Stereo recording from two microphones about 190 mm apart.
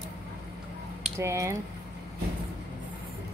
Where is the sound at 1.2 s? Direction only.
15° right (ahead or behind).